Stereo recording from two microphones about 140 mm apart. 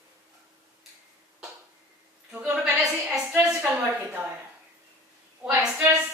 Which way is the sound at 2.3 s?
5° right (ahead or behind).